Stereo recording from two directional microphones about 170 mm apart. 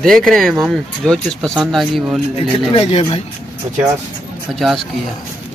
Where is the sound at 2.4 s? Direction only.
35° left (ahead or behind).